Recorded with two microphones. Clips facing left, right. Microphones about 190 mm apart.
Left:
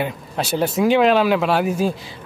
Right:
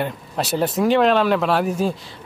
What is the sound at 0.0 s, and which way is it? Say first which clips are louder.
Speech: even; centre (ahead or behind).